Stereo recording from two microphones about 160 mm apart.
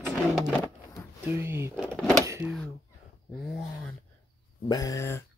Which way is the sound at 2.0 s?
5° left (ahead or behind).